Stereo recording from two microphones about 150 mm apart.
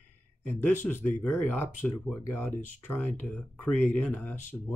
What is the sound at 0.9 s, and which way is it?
Speech, 55° left (ahead or behind).